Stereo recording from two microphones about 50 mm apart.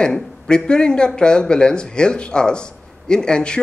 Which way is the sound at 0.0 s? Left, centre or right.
Centre.